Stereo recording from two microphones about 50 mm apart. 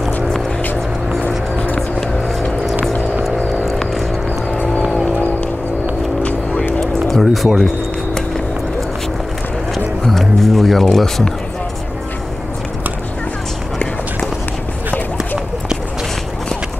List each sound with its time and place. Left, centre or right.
6.8 s music: centre
10.0 s speech: centre